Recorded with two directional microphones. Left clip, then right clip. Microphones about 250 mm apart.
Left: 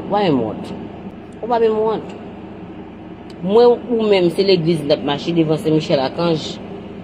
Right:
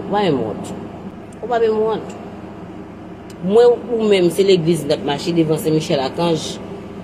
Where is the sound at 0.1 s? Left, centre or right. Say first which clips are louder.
Left 1 dB; centre.